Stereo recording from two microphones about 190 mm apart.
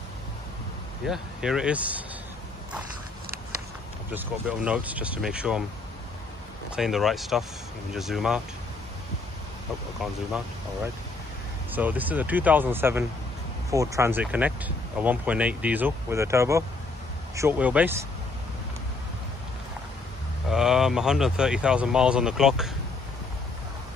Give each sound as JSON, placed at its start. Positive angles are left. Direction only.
{"t": 1.0, "sound": "speech", "side_deg": 0}
{"t": 4.1, "sound": "speech", "side_deg": -10}
{"t": 6.7, "sound": "speech", "side_deg": 0}
{"t": 11.7, "sound": "speech", "side_deg": -10}
{"t": 20.4, "sound": "speech", "side_deg": 0}